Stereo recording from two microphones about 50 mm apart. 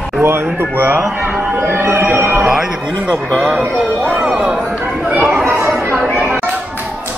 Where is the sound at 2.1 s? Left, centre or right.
Right.